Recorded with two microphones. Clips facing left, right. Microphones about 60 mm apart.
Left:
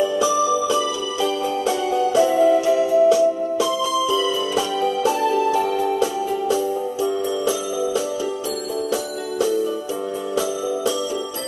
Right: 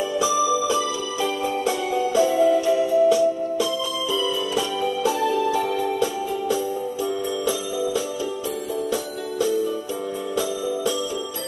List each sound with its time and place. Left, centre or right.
0.5 s music: left
1.9 s music: centre
5.4 s music: centre